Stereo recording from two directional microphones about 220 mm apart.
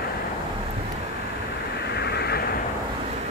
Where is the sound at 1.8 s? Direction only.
50° left (ahead or behind).